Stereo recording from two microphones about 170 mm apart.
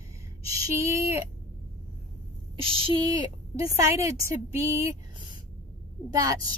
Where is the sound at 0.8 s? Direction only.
15° right (ahead or behind).